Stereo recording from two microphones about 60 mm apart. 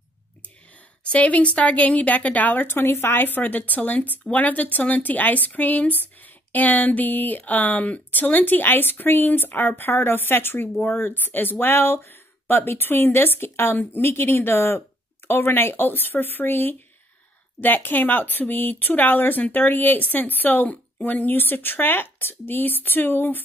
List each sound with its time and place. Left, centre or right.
1.1 s a woman's voice: left